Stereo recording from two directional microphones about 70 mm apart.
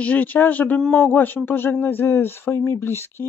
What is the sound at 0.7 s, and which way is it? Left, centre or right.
Speech, centre.